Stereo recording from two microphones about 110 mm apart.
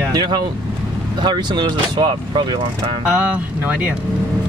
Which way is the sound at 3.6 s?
15° right (ahead or behind).